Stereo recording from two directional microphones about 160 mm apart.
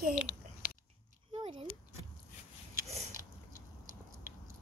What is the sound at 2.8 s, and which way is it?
Biting, 45° right (ahead or behind).